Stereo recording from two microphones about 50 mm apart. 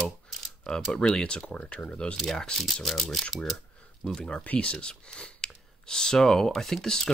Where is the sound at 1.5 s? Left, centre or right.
Left.